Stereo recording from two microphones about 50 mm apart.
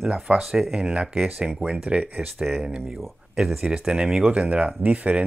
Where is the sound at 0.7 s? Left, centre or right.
Right.